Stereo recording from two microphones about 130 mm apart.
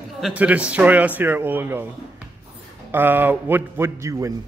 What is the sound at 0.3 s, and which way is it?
A man's voice, 10° right (ahead or behind).